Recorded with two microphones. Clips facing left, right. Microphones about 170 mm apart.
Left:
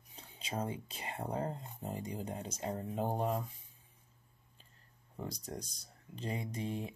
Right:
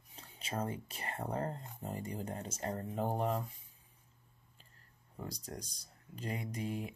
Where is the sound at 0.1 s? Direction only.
15° left (ahead or behind).